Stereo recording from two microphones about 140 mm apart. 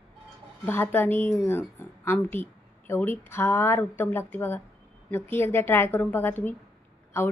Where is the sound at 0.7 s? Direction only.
15° left (ahead or behind).